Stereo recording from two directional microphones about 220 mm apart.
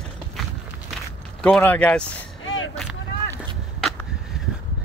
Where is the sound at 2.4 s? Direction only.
60° left (ahead or behind).